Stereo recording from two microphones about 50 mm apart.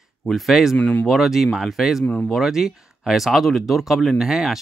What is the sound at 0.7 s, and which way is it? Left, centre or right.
Speech, left.